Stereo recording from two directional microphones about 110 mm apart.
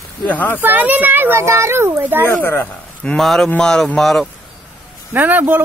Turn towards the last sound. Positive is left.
turn(degrees=-15)  # may be behind; listen again after turning